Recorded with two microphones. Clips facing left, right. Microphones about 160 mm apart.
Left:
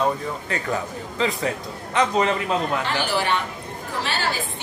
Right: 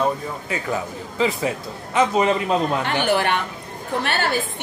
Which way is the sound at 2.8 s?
60° right (ahead or behind).